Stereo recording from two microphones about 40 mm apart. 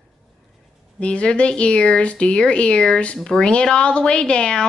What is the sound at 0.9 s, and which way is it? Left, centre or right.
Speech, left.